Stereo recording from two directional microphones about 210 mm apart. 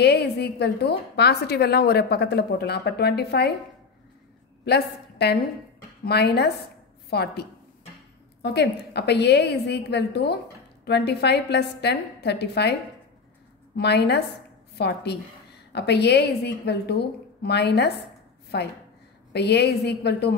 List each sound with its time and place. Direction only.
0.0 s a woman's voice: 50° left (ahead or behind)
4.6 s a woman's voice: 50° left (ahead or behind)
13.7 s a woman's voice: 55° left (ahead or behind)